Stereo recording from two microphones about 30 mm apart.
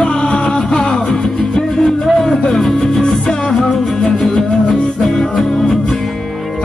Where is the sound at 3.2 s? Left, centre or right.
Left.